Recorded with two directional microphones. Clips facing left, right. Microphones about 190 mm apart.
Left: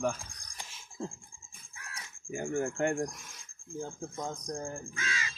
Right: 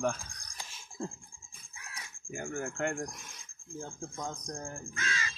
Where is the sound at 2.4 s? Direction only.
25° left (ahead or behind).